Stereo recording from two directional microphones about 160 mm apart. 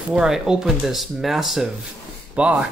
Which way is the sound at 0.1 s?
5° right (ahead or behind).